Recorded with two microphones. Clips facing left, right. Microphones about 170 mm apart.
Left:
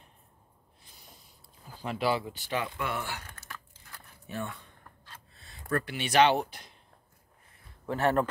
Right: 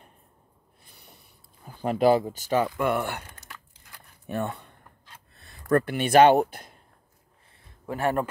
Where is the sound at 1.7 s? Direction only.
50° right (ahead or behind).